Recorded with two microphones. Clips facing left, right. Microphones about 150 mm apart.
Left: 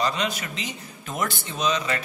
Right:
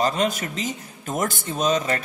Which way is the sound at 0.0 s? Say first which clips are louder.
Right 4 dB; 45° right (ahead or behind).